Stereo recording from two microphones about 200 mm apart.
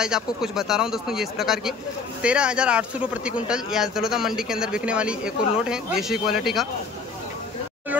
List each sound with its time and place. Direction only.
0.0 s speech: 5° right (ahead or behind)